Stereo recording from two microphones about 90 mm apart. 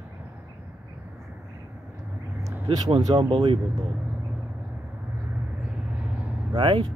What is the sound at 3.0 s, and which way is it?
Speech, 55° right (ahead or behind).